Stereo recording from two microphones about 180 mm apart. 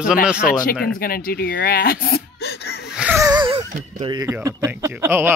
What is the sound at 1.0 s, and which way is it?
Speech, 55° left (ahead or behind).